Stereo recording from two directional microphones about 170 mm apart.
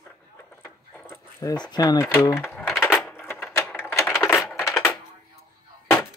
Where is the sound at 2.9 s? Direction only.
5° left (ahead or behind).